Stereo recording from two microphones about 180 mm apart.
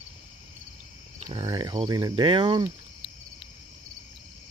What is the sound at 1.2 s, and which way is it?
Speech, 25° right (ahead or behind).